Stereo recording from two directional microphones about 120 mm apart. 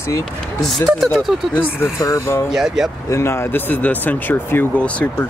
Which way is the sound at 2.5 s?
5° right (ahead or behind).